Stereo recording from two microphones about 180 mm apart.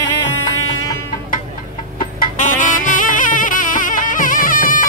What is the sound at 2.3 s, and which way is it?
Music, 45° left (ahead or behind).